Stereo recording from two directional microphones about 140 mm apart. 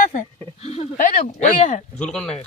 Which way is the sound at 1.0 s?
65° left (ahead or behind).